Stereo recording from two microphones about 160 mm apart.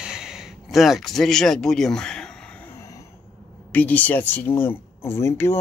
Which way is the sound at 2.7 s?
20° left (ahead or behind).